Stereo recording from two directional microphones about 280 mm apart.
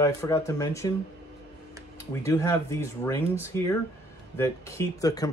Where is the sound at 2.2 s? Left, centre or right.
Centre.